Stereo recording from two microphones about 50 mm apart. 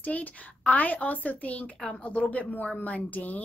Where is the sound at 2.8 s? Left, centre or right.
Left.